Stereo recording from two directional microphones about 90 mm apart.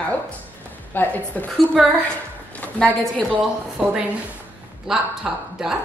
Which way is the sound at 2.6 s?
20° left (ahead or behind).